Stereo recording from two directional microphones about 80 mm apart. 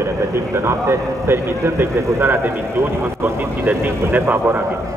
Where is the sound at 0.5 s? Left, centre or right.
Right.